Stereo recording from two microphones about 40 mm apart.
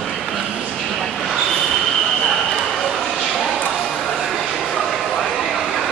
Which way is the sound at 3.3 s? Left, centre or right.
Centre.